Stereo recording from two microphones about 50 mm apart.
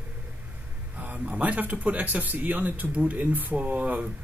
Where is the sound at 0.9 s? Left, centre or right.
Right.